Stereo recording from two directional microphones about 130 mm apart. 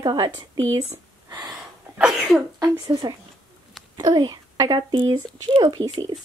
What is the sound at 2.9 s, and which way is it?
Speech, 35° right (ahead or behind).